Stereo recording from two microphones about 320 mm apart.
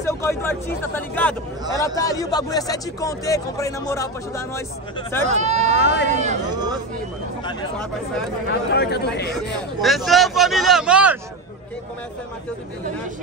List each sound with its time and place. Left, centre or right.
0.0 s speech: centre
5.2 s speech: right
5.8 s speech: left
6.0 s speech: right
8.5 s speech: left
9.8 s speech: centre